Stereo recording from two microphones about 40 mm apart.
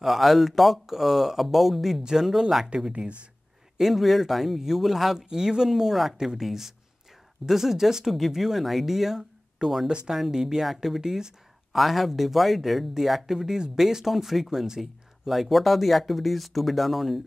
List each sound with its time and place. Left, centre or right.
0.0 s speech: centre
2.9 s speech: right
3.7 s speech: centre
11.7 s speech: centre